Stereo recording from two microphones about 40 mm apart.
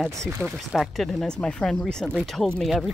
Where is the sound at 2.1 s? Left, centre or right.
Centre.